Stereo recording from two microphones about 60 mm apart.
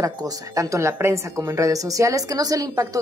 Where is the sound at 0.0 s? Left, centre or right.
Right.